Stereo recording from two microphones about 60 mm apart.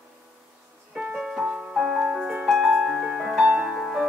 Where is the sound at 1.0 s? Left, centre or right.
Centre.